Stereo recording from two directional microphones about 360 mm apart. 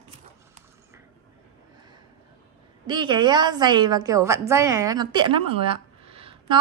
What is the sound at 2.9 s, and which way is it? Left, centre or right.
A woman's voice, centre.